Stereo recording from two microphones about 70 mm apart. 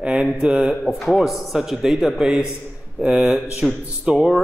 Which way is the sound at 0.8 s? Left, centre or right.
Centre.